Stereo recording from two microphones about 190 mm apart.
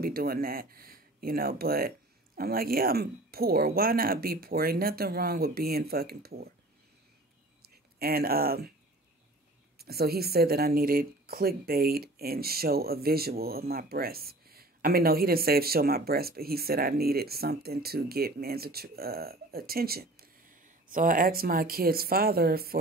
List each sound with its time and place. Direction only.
0.0 s speech: 55° right (ahead or behind)
7.6 s a sound: 50° right (ahead or behind)
9.8 s speech: 55° right (ahead or behind)